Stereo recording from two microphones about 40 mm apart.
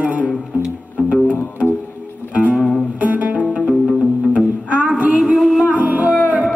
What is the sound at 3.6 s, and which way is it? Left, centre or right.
Music, centre.